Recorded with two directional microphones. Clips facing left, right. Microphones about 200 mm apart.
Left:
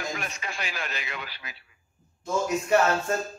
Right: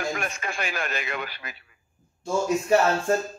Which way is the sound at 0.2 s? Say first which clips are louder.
Right 4 dB; 50° right (ahead or behind).